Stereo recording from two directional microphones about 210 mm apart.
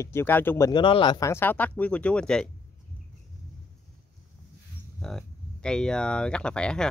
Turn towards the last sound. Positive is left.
turn(degrees=5)  # may be behind; listen again after turning